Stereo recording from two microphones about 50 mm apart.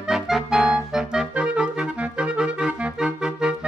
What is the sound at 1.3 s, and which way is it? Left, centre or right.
Clarinet, right.